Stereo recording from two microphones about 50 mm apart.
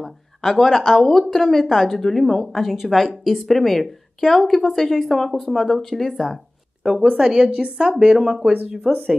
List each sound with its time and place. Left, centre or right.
0.0 s speech: centre
7.2 s speech: centre